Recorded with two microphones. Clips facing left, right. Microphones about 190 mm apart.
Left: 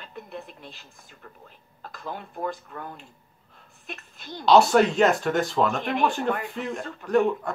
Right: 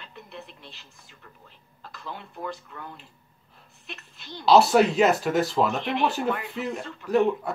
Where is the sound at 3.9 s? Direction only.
45° left (ahead or behind).